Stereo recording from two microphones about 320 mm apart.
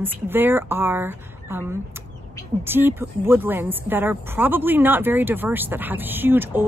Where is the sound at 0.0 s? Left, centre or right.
Centre.